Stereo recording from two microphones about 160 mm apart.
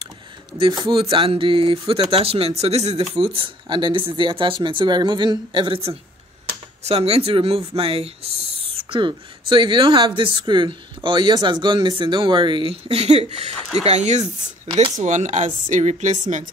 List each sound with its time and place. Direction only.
0.6 s speech: 30° right (ahead or behind)
14.2 s speech: 30° right (ahead or behind)
15.0 s speech: 50° right (ahead or behind)